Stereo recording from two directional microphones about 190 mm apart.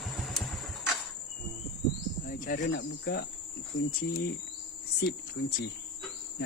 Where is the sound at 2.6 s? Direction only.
75° left (ahead or behind).